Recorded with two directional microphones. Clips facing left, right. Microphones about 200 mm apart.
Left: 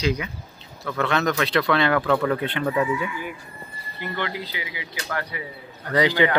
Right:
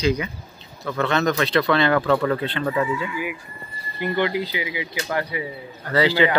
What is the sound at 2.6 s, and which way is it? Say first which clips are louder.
Speech: left 1 dB; 5° left (ahead or behind).